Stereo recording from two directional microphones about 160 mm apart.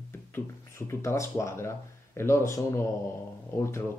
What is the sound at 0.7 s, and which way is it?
Speech, 20° left (ahead or behind).